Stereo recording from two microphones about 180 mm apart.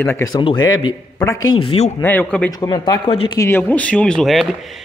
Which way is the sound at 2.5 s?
20° left (ahead or behind).